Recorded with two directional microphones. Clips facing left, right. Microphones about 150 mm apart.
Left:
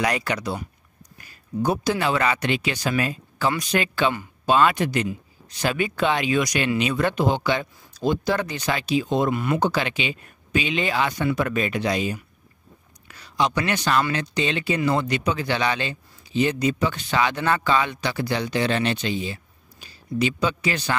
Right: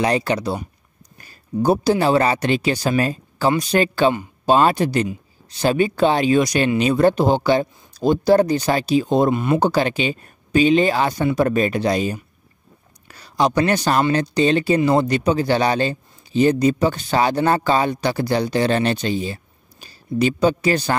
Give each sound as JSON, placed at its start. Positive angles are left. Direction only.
{"t": 0.0, "sound": "a man's voice", "side_deg": -30}
{"t": 9.3, "sound": "a man's voice", "side_deg": -25}